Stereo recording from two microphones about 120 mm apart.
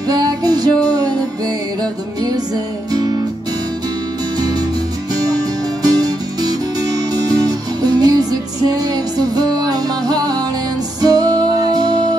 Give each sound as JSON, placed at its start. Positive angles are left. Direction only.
{"t": 0.1, "sound": "music", "side_deg": -35}
{"t": 2.9, "sound": "guitar", "side_deg": -35}
{"t": 5.8, "sound": "music", "side_deg": -35}